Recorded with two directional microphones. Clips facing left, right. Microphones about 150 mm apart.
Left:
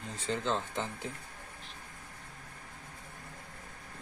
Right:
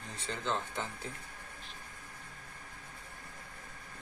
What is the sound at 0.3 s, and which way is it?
Speech, 20° left (ahead or behind).